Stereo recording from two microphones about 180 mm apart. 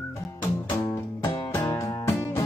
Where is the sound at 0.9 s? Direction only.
20° left (ahead or behind).